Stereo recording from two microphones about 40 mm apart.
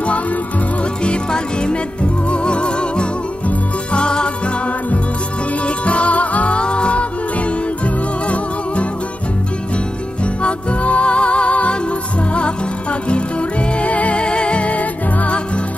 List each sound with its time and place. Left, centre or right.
1.0 s music: left
5.9 s music: left
10.4 s music: left
13.7 s music: left